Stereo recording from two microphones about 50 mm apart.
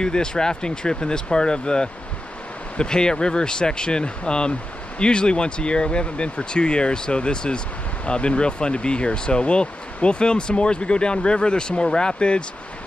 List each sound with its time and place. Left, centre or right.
0.0 s speech: centre